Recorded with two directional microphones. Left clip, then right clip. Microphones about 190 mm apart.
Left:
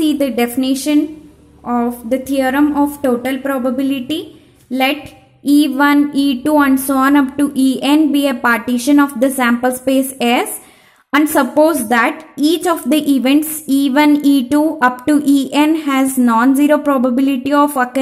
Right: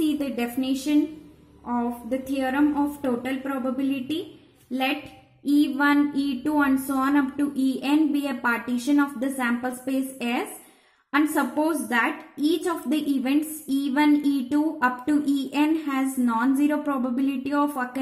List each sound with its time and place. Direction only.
0.2 s a woman's voice: 35° left (ahead or behind)
5.4 s a woman's voice: 40° left (ahead or behind)